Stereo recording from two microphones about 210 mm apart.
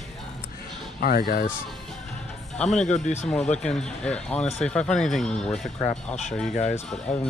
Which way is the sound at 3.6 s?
5° left (ahead or behind).